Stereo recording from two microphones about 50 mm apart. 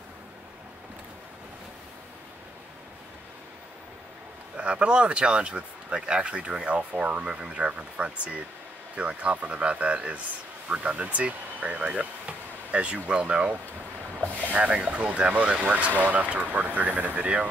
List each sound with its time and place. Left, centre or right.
4.6 s speech: right
14.6 s speech: right